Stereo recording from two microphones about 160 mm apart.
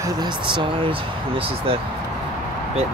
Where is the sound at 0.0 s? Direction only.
30° right (ahead or behind).